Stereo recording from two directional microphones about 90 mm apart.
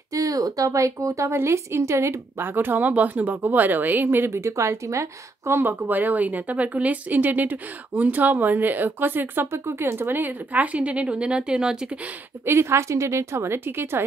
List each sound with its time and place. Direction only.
0.1 s speech: 40° right (ahead or behind); by 11.9 s 10° right (ahead or behind)
12.4 s speech: 30° right (ahead or behind)